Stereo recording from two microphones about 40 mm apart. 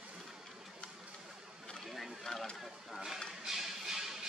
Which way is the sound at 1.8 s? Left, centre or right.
Centre.